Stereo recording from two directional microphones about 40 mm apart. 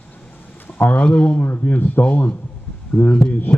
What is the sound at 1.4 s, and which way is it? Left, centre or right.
Speech, left.